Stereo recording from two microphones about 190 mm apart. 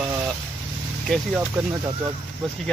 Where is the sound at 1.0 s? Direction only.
5° right (ahead or behind).